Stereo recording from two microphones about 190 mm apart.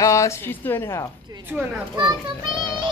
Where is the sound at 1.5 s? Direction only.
10° right (ahead or behind).